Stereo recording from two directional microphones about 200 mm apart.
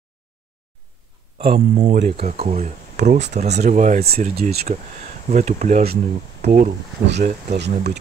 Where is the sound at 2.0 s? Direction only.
50° right (ahead or behind).